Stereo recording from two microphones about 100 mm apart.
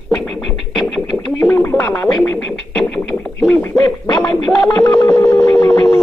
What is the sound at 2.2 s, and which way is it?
Music, 15° left (ahead or behind).